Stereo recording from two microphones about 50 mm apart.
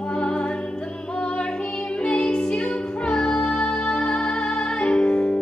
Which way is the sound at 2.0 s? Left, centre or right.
Centre.